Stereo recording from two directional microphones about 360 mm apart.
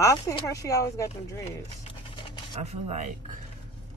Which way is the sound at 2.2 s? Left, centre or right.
Centre.